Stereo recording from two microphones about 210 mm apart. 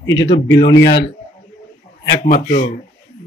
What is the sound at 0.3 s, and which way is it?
Speech, 55° left (ahead or behind).